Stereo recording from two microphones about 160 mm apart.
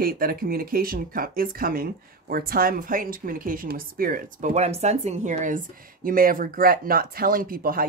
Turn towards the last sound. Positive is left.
turn(degrees=-65)  # may be behind; listen again after turning